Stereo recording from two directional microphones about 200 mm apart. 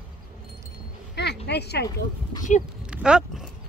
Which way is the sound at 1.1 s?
55° left (ahead or behind).